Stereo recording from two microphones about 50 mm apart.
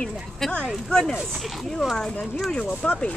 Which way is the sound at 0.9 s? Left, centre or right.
Centre.